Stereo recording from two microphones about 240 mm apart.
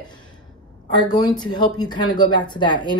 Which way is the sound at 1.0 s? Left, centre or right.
Centre.